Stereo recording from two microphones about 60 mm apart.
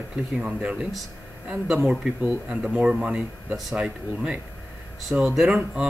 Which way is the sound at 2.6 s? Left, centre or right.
Centre.